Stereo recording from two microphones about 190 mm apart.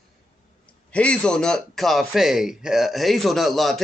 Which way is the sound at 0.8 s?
5° left (ahead or behind).